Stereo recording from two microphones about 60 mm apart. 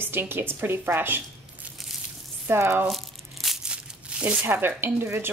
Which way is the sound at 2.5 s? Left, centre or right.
Right.